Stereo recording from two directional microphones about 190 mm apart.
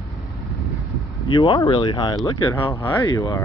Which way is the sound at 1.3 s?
20° left (ahead or behind).